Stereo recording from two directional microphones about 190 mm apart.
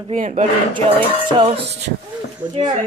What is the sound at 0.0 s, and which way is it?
Speech, 40° right (ahead or behind).